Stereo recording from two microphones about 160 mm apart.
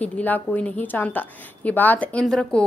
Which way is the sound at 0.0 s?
10° left (ahead or behind).